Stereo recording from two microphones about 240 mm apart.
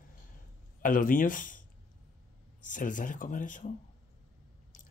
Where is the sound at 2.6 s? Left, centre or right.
Left.